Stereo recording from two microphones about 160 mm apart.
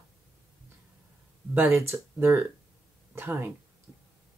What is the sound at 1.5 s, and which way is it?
Speech, 15° right (ahead or behind).